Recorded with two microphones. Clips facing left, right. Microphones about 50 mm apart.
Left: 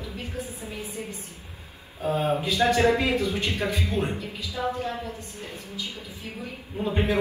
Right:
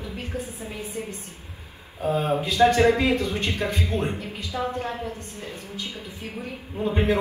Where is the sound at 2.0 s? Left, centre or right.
Right.